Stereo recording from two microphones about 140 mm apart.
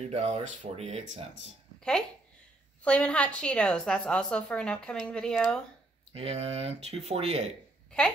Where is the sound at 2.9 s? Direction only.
10° left (ahead or behind).